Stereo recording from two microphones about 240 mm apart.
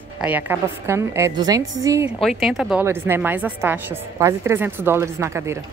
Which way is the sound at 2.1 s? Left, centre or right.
Centre.